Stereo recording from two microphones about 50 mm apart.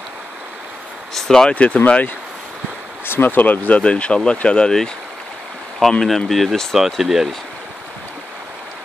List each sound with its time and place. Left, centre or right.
1.1 s speech: centre
1.5 s speech: left
3.1 s speech: left; by 4.7 s centre
5.8 s speech: centre
6.8 s speech: centre